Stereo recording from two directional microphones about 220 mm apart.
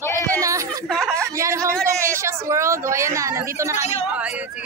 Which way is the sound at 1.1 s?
15° right (ahead or behind).